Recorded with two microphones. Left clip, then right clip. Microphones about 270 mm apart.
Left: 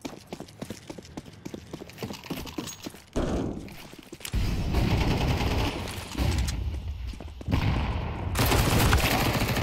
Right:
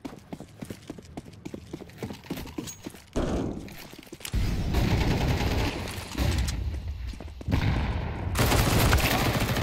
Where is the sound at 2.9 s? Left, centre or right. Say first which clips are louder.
Right 1 dB; centre.